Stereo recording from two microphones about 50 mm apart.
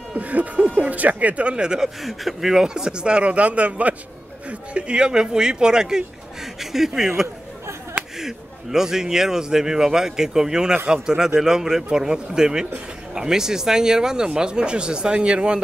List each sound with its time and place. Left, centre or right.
0.1 s speech: right
2.0 s speech: centre
7.9 s speech: centre